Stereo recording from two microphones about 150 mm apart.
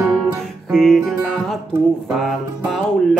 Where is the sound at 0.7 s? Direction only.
5° left (ahead or behind).